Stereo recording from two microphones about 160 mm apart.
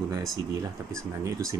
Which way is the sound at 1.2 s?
20° right (ahead or behind).